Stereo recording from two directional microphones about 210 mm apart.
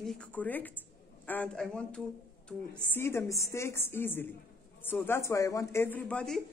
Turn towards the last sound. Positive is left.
turn(degrees=5)  # may be behind; listen again after turning